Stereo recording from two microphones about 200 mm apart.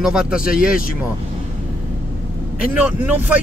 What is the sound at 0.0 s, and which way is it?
Speech, 5° right (ahead or behind).